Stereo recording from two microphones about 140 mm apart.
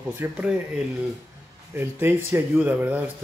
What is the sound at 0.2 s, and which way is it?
Speech, 15° right (ahead or behind).